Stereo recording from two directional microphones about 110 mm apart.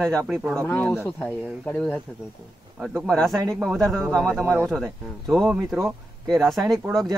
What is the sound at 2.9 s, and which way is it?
Speech, 5° left (ahead or behind).